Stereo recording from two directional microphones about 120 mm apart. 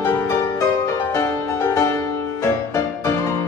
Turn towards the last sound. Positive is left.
turn(degrees=25)  # may be behind; listen again after turning